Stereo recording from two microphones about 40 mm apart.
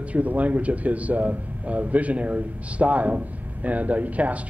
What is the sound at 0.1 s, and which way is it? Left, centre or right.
Speech, right.